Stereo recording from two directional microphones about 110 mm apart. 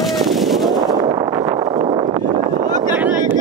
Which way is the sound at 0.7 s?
40° right (ahead or behind).